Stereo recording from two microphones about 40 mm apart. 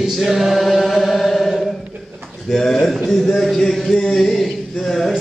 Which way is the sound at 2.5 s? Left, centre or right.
Centre.